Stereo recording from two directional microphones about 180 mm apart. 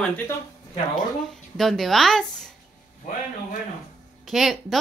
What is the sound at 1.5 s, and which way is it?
Speech, centre (ahead or behind).